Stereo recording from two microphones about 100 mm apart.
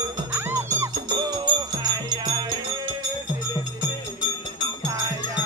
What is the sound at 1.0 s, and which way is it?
Music, 45° right (ahead or behind).